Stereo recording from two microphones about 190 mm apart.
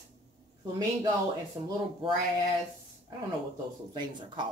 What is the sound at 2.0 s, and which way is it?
Speech, 25° right (ahead or behind).